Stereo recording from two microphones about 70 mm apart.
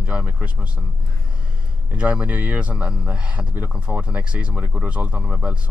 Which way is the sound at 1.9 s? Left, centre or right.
Centre.